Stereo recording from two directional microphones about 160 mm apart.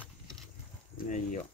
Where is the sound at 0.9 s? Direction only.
50° left (ahead or behind).